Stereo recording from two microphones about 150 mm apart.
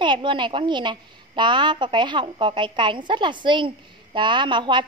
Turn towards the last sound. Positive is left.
turn(degrees=-30)  # may be behind; listen again after turning